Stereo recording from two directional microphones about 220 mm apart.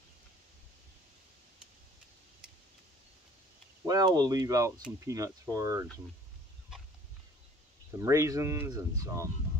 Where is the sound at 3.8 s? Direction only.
15° right (ahead or behind).